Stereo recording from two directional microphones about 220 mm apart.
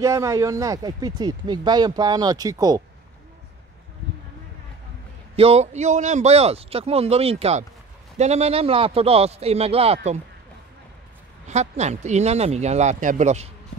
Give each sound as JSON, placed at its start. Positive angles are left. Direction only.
{"t": 0.0, "sound": "speech", "side_deg": -15}
{"t": 5.3, "sound": "speech", "side_deg": -25}
{"t": 11.4, "sound": "speech", "side_deg": -30}